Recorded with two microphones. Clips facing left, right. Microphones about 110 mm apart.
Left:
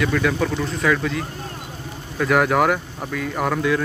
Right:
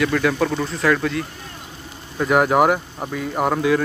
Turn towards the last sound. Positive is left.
turn(degrees=-10)  # may be behind; listen again after turning